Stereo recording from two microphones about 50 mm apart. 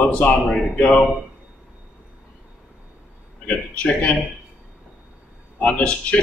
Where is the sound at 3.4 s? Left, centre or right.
Left.